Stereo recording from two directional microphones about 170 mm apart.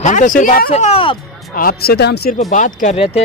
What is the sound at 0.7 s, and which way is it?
Speech, 35° left (ahead or behind).